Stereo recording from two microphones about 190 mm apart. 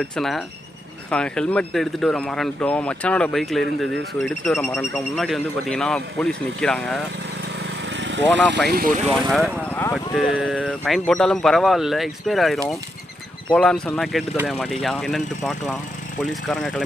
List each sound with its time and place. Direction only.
0.0 s speech: centre (ahead or behind)
7.9 s speech: 70° right (ahead or behind); by 8.9 s 55° right (ahead or behind)
9.3 s speech: 5° left (ahead or behind)